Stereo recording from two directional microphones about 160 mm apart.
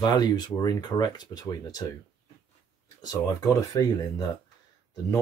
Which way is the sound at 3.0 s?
25° left (ahead or behind).